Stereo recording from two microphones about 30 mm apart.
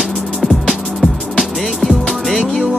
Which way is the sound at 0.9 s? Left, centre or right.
Centre.